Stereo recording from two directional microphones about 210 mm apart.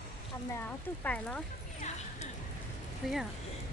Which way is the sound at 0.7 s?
5° left (ahead or behind).